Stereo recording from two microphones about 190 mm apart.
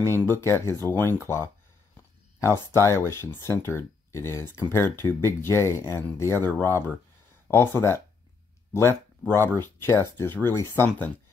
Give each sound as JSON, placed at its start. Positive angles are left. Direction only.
{"t": 0.1, "sound": "speech", "side_deg": 15}
{"t": 2.7, "sound": "speech", "side_deg": 15}
{"t": 9.3, "sound": "speech", "side_deg": 10}